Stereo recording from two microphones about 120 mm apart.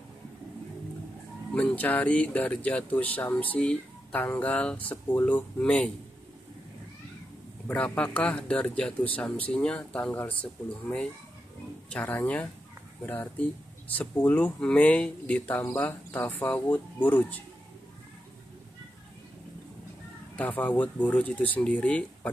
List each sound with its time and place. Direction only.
1.5 s speech: 10° left (ahead or behind)
7.6 s speech: 10° left (ahead or behind)
20.3 s speech: 15° left (ahead or behind)